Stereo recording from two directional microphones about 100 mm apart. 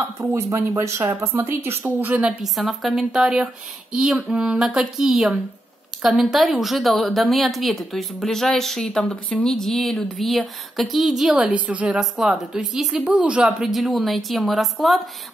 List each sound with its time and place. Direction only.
0.3 s speech: 25° right (ahead or behind)
2.2 s a woman's voice: centre (ahead or behind)
11.5 s a woman's voice: 15° right (ahead or behind)
12.0 s a woman's voice: 5° right (ahead or behind)